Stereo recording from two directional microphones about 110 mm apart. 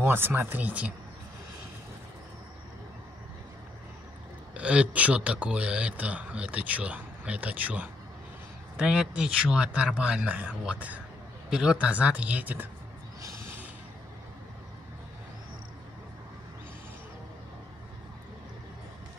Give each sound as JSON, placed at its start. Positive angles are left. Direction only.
{"t": 0.0, "sound": "speech", "side_deg": -20}
{"t": 4.6, "sound": "speech", "side_deg": -10}